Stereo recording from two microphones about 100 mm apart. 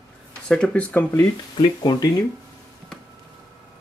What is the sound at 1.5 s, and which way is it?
Speech, 45° left (ahead or behind).